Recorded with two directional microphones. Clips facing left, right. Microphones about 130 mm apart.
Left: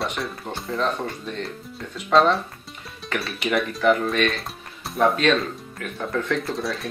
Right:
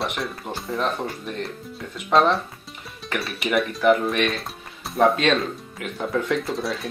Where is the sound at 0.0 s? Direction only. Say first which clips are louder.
Even; centre (ahead or behind).